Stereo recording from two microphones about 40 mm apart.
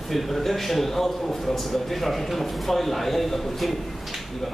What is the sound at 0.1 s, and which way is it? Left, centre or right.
A man's voice, centre.